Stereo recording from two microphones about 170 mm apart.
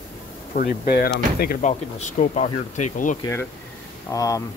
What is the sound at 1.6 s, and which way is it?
Speech, 45° left (ahead or behind).